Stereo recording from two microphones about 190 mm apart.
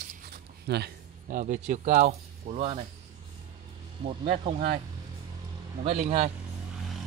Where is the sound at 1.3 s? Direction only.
45° right (ahead or behind).